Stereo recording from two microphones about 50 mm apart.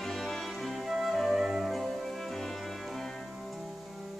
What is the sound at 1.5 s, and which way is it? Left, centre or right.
Music, centre.